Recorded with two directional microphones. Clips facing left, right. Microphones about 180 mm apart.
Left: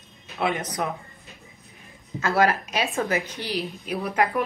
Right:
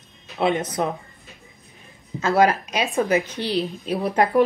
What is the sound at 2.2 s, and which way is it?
Speech, 20° right (ahead or behind).